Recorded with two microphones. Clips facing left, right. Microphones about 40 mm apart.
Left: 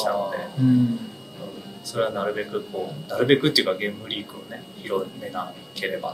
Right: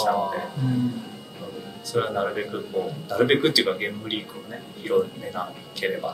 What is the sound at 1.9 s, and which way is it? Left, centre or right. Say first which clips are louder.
Speech: even; centre.